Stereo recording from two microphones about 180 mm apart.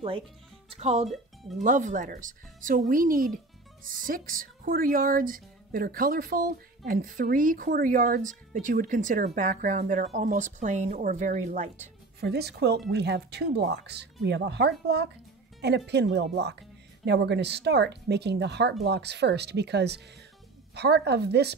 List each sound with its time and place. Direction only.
0.7 s speech: 35° right (ahead or behind)
12.2 s speech: 65° right (ahead or behind)